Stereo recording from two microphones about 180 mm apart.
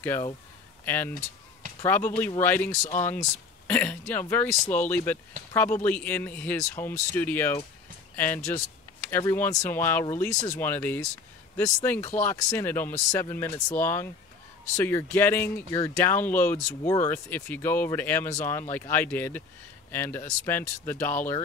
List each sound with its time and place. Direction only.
0.0 s speech: 10° left (ahead or behind)
2.8 s speech: 40° left (ahead or behind)
3.1 s speech: 10° left (ahead or behind)